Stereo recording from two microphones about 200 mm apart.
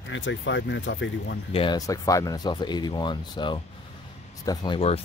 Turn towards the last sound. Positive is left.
turn(degrees=30)  # may be behind; listen again after turning